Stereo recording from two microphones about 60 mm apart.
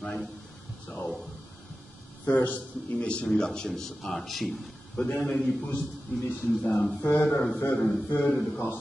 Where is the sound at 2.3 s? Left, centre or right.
Left.